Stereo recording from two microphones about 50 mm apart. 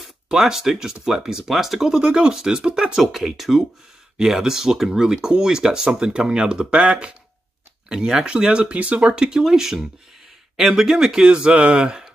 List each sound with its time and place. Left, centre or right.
0.3 s speech: centre
3.0 s speech: centre; by 9.2 s right
9.2 s speech: centre